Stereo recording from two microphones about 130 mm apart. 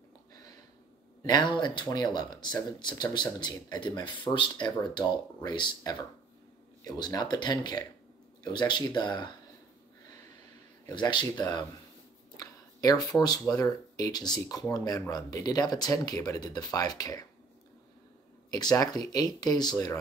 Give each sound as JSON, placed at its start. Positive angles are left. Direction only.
{"t": 1.2, "sound": "speech", "side_deg": 35}
{"t": 10.9, "sound": "speech", "side_deg": 35}
{"t": 18.5, "sound": "speech", "side_deg": 30}